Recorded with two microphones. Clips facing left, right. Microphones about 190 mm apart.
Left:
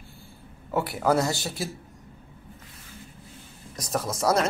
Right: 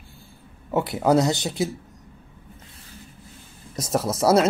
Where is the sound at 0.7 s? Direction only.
20° right (ahead or behind).